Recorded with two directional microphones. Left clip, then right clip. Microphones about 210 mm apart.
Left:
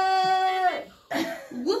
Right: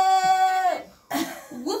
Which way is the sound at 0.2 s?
50° right (ahead or behind).